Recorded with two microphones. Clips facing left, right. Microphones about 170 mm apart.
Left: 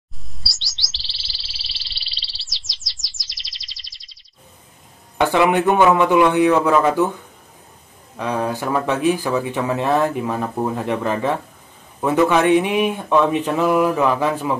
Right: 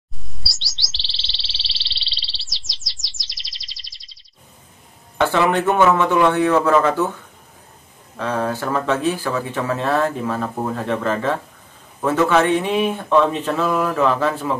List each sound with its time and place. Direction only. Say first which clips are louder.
0.4 s chirp: right 1 dB; centre (ahead or behind)
1.1 s a sound: right 3 dB; 25° right (ahead or behind)
2.1 s chirp: right 1 dB; centre (ahead or behind)
5.1 s speech: left 1 dB; 15° left (ahead or behind)
8.2 s speech: even; 15° left (ahead or behind)